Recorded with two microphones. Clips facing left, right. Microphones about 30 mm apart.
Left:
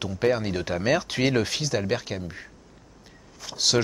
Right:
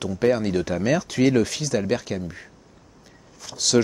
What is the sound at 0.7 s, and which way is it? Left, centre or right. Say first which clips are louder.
Speech: right 1 dB; left.